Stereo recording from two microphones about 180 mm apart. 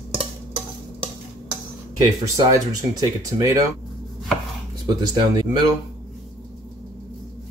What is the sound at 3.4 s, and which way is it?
Speech, 20° right (ahead or behind).